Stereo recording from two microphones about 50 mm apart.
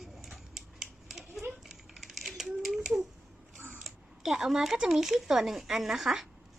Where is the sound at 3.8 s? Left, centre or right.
Centre.